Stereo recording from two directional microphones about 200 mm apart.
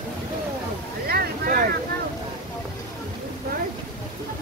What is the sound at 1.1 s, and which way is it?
Boat, 45° right (ahead or behind).